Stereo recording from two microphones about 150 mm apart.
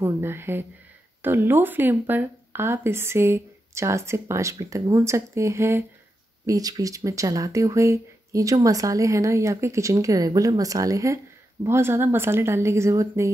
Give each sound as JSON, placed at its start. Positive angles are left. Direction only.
{"t": 0.0, "sound": "speech", "side_deg": -15}